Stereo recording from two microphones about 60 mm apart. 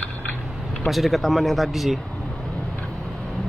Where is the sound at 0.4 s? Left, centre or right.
Centre.